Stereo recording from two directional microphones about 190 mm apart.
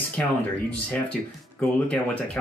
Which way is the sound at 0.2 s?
5° left (ahead or behind).